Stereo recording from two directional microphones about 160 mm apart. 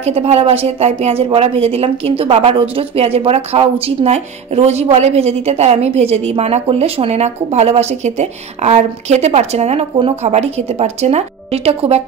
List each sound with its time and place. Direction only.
0.0 s speech: 40° right (ahead or behind)